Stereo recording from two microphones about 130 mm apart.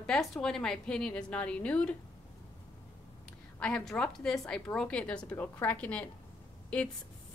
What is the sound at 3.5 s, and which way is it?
A woman's voice, 5° left (ahead or behind).